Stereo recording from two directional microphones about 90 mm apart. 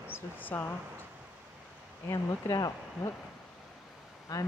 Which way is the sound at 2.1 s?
40° left (ahead or behind).